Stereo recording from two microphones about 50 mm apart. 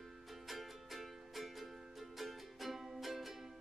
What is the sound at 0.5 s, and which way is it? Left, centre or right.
Music, centre.